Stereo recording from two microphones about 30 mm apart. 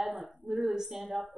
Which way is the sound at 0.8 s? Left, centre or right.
Centre.